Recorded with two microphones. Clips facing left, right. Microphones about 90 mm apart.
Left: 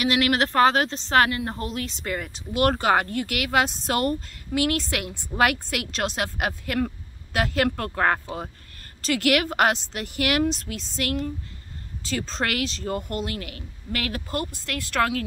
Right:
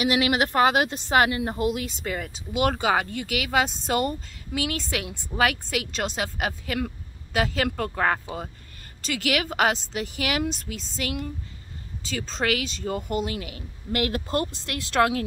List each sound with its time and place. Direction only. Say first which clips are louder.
0.0 s a woman's voice: even; 10° right (ahead or behind)